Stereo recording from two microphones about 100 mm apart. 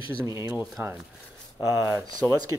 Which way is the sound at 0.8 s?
20° right (ahead or behind).